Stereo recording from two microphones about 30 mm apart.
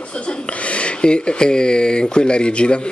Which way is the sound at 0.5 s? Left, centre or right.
Left.